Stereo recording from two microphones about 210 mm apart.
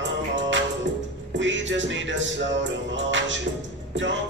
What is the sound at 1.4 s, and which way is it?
Music, 60° right (ahead or behind).